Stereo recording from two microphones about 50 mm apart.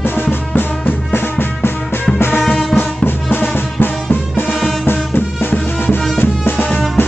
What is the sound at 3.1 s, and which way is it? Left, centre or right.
Music, left.